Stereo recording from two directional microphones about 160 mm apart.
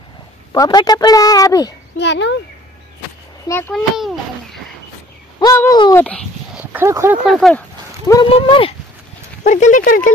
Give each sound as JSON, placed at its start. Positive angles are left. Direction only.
{"t": 0.5, "sound": "speech", "side_deg": 25}
{"t": 2.0, "sound": "a child's voice", "side_deg": 90}
{"t": 3.4, "sound": "a child's voice", "side_deg": 15}
{"t": 3.7, "sound": "babbling", "side_deg": 0}
{"t": 5.4, "sound": "speech", "side_deg": 20}
{"t": 6.5, "sound": "a sound", "side_deg": -10}
{"t": 7.3, "sound": "a child's voice", "side_deg": 5}
{"t": 8.3, "sound": "speech", "side_deg": 35}
{"t": 9.4, "sound": "speech", "side_deg": 50}